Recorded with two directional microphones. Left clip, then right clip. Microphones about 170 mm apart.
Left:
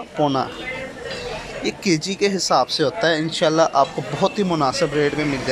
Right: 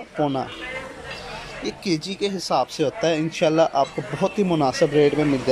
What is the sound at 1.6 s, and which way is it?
Speech, centre (ahead or behind).